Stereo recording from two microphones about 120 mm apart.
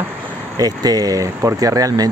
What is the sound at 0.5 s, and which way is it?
Speech, 30° right (ahead or behind).